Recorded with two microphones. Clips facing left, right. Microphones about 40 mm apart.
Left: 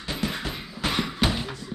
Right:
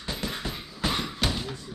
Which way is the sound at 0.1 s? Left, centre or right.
Left.